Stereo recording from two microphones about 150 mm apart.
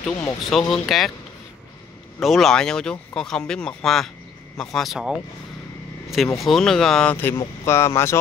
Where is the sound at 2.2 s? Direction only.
Centre (ahead or behind).